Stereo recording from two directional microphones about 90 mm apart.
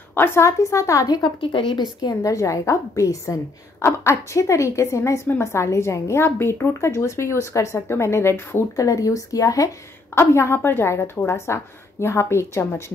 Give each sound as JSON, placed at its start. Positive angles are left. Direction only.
{"t": 0.1, "sound": "a woman's voice", "side_deg": 25}
{"t": 1.4, "sound": "a woman's voice", "side_deg": 70}